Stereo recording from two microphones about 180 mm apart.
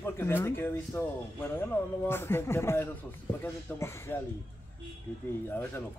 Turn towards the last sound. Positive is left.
turn(degrees=10)  # may be behind; listen again after turning